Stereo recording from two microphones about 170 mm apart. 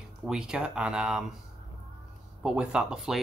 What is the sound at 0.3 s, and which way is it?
Speech, 5° right (ahead or behind).